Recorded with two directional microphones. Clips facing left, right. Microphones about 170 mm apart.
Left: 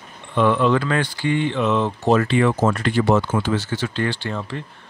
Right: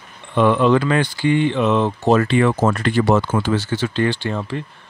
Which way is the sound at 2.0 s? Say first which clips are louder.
Right 1 dB; 50° right (ahead or behind).